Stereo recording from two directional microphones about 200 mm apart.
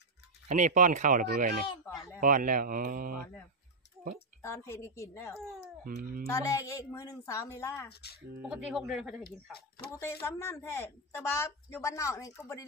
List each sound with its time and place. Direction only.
0.5 s speech: 40° right (ahead or behind)
1.7 s a sound: 25° left (ahead or behind)
2.1 s speech: 40° right (ahead or behind)
4.4 s speech: 15° left (ahead or behind)
5.9 s speech: 45° right (ahead or behind)
6.2 s speech: 15° left (ahead or behind)
7.9 s speech: 55° left (ahead or behind)
8.4 s speech: 5° right (ahead or behind)
9.8 s speech: 15° left (ahead or behind)